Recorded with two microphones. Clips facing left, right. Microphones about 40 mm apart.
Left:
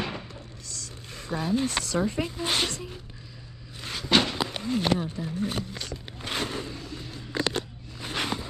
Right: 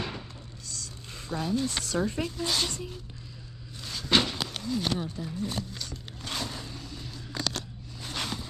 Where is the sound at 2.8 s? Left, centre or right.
Left.